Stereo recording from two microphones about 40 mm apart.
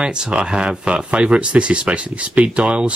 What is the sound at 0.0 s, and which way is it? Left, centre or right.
Speech, right.